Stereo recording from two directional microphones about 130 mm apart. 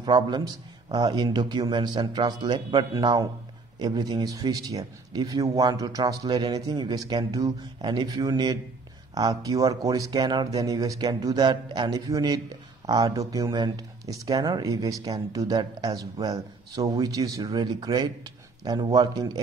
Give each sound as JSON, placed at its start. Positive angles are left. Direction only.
{"t": 0.0, "sound": "a man's voice", "side_deg": -35}